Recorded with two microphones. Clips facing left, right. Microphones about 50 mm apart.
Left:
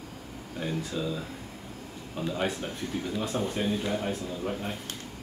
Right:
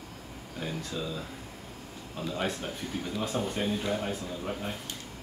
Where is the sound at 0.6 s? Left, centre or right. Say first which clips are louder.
Left 3 dB; centre.